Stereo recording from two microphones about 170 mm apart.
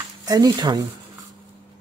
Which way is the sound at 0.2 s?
20° right (ahead or behind).